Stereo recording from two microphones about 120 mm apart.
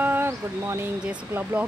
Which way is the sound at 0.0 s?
20° right (ahead or behind).